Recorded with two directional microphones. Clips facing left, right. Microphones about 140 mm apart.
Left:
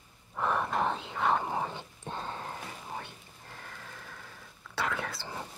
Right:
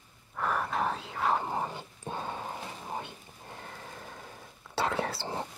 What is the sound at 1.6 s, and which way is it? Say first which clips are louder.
Dog: right 1 dB; 10° right (ahead or behind).